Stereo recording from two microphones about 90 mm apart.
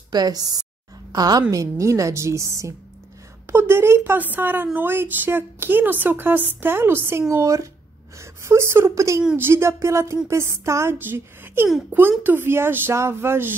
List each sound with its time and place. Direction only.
0.1 s a woman's voice: 45° right (ahead or behind); by 13.6 s 25° right (ahead or behind)